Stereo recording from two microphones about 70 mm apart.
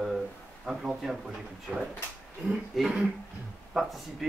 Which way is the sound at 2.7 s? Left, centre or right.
Centre.